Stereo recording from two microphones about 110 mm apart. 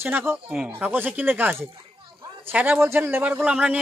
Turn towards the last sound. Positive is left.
turn(degrees=-15)  # may be behind; listen again after turning